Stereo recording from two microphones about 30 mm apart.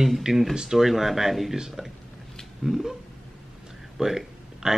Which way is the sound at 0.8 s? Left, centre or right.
Centre.